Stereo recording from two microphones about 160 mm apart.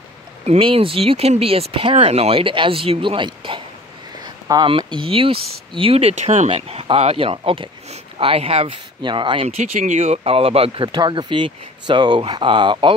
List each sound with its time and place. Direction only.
0.5 s speech: 35° right (ahead or behind)
9.6 s speech: 50° right (ahead or behind); by 12.9 s 30° right (ahead or behind)